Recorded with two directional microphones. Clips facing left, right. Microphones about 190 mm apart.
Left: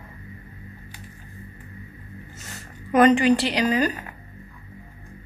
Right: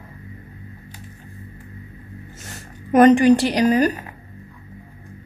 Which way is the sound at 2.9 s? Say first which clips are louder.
Right 5 dB; 45° right (ahead or behind).